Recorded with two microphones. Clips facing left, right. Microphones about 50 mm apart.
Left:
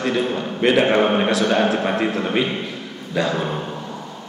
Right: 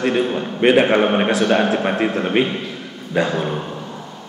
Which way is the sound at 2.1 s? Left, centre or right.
Right.